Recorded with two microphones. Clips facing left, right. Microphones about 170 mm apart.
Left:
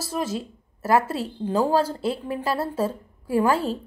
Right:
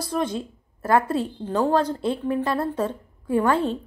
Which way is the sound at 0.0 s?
5° left (ahead or behind).